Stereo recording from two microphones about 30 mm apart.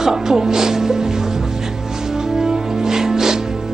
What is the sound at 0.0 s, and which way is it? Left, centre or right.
Speech, centre.